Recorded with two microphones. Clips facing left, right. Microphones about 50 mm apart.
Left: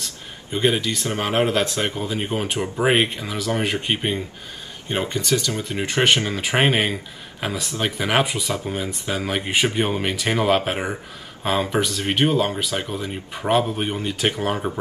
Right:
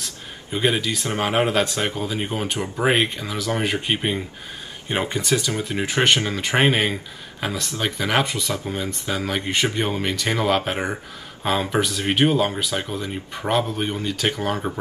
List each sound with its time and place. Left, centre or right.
0.0 s a sound: centre
1.2 s speech: centre
2.0 s speech: centre
4.8 s speech: centre
5.6 s speech: centre
13.6 s speech: centre